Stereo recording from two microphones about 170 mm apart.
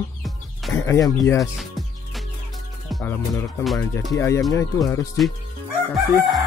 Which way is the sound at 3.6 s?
Centre (ahead or behind).